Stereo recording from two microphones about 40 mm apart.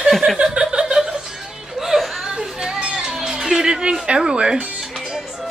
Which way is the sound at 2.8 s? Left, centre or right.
Centre.